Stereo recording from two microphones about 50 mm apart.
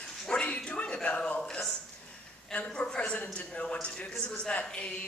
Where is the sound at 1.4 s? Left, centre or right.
Centre.